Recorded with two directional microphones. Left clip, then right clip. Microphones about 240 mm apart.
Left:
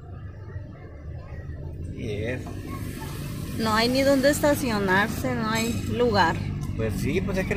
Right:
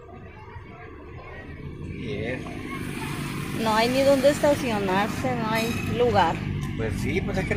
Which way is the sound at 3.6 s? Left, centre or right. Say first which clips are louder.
Right 1 dB; centre.